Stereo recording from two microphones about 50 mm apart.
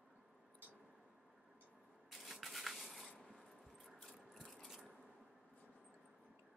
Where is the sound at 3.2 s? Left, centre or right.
Centre.